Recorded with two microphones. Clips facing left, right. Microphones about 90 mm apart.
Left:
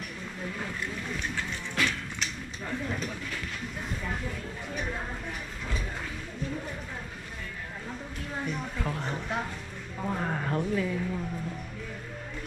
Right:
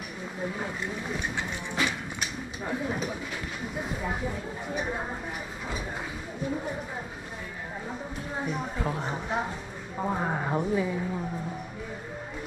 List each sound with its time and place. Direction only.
0.4 s a woman's voice: 20° right (ahead or behind)
8.4 s a woman's voice: 15° right (ahead or behind)